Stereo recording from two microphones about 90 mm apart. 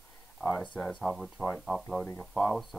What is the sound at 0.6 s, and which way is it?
Speech, 10° left (ahead or behind).